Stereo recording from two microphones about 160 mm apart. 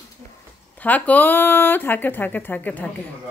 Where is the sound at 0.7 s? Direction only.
10° left (ahead or behind).